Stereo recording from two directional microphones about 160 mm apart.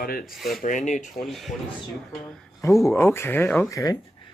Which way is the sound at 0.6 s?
50° left (ahead or behind).